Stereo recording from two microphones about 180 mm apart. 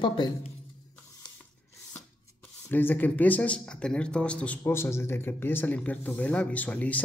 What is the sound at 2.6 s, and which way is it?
Speech, 10° left (ahead or behind).